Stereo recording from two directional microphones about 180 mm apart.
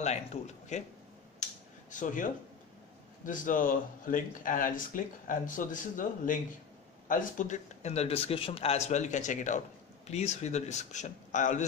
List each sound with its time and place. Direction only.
0.0 s speech: 40° left (ahead or behind)
1.4 s dishes: 45° left (ahead or behind)
3.3 s speech: 45° left (ahead or behind)